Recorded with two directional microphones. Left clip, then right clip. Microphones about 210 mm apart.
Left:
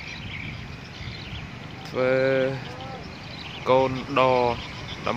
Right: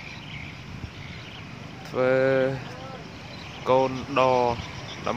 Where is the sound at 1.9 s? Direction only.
10° right (ahead or behind).